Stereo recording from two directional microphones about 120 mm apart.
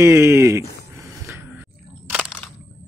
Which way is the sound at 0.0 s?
20° right (ahead or behind).